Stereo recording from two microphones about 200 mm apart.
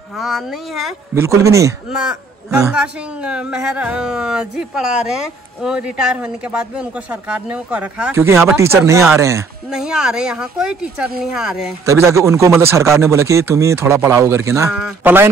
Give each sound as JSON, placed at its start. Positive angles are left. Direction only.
{"t": 0.1, "sound": "speech", "side_deg": 0}
{"t": 1.1, "sound": "a man's voice", "side_deg": -15}
{"t": 1.9, "sound": "a man's voice", "side_deg": -5}
{"t": 9.7, "sound": "speech", "side_deg": -5}
{"t": 11.8, "sound": "a man's voice", "side_deg": -15}
{"t": 14.7, "sound": "speech", "side_deg": -5}